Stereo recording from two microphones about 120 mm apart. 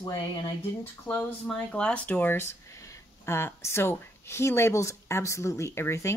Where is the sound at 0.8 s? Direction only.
15° left (ahead or behind).